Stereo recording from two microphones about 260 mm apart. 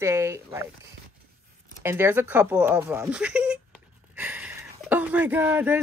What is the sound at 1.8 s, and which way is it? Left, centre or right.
Speech, centre.